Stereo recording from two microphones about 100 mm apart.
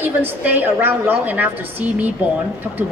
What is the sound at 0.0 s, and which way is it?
A woman's voice, 20° right (ahead or behind).